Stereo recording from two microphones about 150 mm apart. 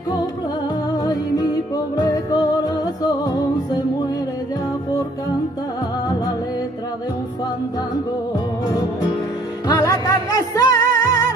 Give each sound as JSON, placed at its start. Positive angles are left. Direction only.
{"t": 1.0, "sound": "music", "side_deg": 25}
{"t": 8.6, "sound": "music", "side_deg": 25}